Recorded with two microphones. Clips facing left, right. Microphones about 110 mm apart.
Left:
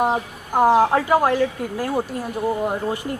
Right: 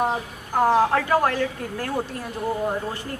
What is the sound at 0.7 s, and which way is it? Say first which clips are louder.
Speech: left 3 dB; 15° left (ahead or behind).